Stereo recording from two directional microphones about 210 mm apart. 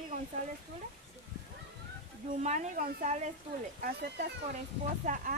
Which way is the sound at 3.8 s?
50° right (ahead or behind).